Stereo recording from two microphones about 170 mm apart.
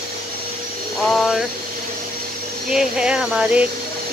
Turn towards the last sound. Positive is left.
turn(degrees=-5)  # may be behind; listen again after turning